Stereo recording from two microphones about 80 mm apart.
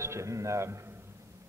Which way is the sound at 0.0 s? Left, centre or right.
Right.